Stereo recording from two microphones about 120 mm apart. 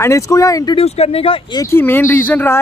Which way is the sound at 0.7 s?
55° left (ahead or behind).